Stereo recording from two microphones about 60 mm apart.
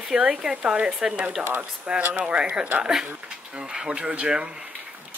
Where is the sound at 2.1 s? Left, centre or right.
Centre.